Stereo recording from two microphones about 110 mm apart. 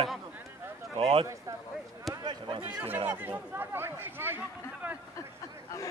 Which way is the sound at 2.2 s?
45° right (ahead or behind).